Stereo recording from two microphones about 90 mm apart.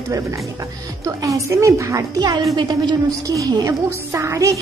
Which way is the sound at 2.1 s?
50° right (ahead or behind).